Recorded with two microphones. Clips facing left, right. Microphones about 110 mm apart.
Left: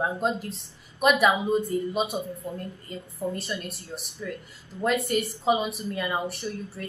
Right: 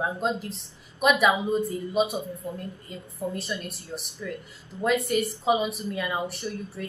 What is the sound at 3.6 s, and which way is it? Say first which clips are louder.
Speech: right 1 dB; centre (ahead or behind).